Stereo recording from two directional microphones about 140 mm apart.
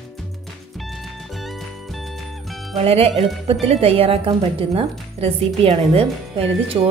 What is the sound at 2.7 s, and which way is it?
A woman's voice, 45° right (ahead or behind).